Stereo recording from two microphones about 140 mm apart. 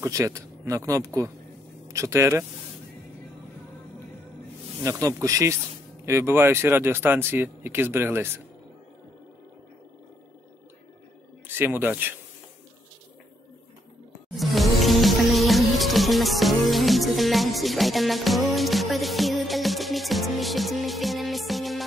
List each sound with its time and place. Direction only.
0.0 s speech: 20° right (ahead or behind)
4.8 s speech: 25° right (ahead or behind)
11.4 s speech: 15° right (ahead or behind)
14.3 s music: centre (ahead or behind)